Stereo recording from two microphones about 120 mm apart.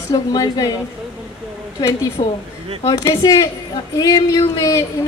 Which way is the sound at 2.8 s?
35° left (ahead or behind).